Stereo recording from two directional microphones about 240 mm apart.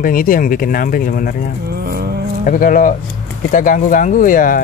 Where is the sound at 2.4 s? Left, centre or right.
Left.